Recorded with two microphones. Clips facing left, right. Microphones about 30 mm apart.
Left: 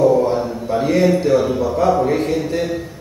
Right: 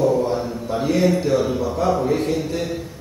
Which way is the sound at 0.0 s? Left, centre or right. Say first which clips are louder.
Left 5 dB; centre.